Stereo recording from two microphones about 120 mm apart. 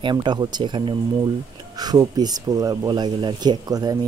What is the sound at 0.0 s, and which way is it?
Speech, 40° right (ahead or behind).